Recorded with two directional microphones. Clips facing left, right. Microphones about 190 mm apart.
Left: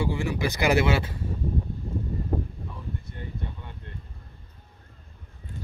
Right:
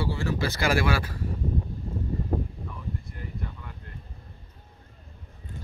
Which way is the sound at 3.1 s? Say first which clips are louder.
Left 1 dB; 25° left (ahead or behind).